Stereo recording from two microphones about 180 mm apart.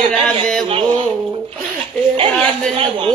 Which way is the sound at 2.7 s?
30° right (ahead or behind).